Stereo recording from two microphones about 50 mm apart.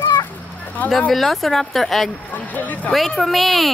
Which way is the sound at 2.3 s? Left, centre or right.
Left.